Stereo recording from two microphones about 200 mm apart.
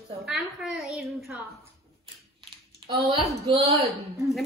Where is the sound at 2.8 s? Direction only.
25° right (ahead or behind).